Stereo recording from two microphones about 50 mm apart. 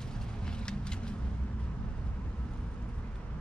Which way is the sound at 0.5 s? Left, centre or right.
Centre.